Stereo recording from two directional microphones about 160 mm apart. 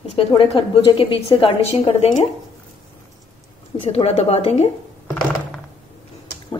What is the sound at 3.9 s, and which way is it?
Speech, 40° left (ahead or behind).